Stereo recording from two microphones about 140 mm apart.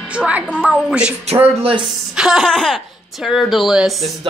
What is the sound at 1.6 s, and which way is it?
Speech, 40° right (ahead or behind).